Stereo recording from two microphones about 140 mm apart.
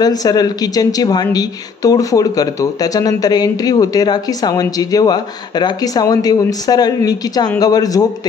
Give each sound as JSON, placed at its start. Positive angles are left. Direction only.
{"t": 0.0, "sound": "a woman's voice", "side_deg": 25}